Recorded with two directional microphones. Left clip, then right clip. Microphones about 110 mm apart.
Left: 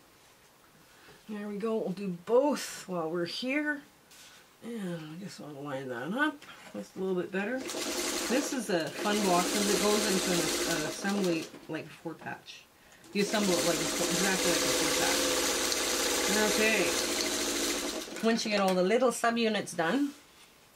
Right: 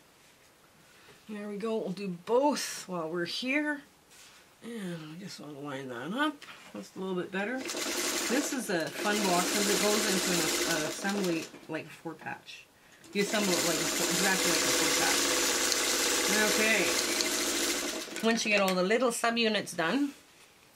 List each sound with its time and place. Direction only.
1.3 s speech: 15° right (ahead or behind)